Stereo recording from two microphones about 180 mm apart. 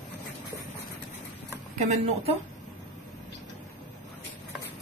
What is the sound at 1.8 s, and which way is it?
Speech, 40° right (ahead or behind).